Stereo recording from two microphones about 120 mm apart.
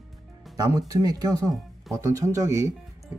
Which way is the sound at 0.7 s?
30° right (ahead or behind).